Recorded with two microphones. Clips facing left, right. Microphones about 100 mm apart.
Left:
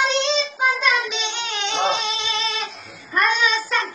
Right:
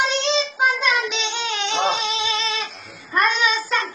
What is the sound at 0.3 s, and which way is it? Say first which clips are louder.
Child singing: right 1 dB; centre (ahead or behind).